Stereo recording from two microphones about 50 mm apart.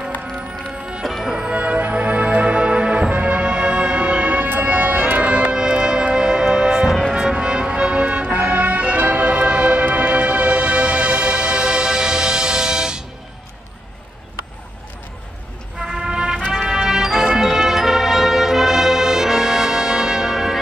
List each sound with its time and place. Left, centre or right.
1.0 s music: centre
1.3 s music: centre
6.9 s music: centre
7.2 s music: centre
15.8 s music: centre